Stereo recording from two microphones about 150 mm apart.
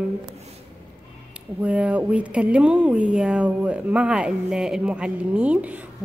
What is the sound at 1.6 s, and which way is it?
Speech, 10° right (ahead or behind).